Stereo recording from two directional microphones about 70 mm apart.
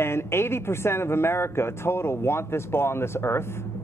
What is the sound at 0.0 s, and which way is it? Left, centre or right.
Speech, left.